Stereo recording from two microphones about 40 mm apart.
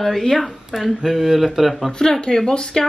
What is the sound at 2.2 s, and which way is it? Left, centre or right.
Speech, centre.